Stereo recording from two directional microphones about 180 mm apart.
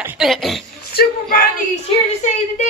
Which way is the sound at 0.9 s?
55° left (ahead or behind).